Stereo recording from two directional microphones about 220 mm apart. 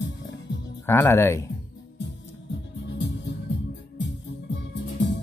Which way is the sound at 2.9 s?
50° left (ahead or behind).